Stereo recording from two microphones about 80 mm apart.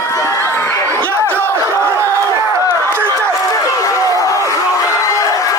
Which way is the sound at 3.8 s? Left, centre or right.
Left.